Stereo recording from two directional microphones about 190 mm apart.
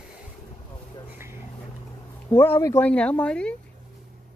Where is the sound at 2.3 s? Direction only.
10° left (ahead or behind).